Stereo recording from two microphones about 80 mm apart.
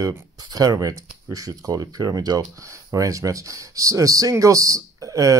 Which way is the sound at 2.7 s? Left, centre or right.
Right.